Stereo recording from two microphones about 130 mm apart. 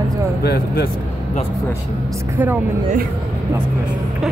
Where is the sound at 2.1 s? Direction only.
20° right (ahead or behind).